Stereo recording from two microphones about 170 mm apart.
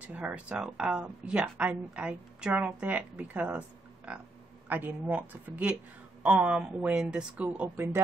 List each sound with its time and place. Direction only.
0.0 s speech: 5° right (ahead or behind)